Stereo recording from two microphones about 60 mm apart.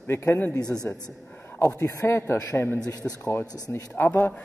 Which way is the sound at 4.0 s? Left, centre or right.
Left.